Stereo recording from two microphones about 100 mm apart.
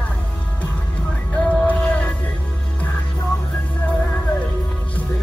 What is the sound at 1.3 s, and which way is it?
Music, 15° left (ahead or behind).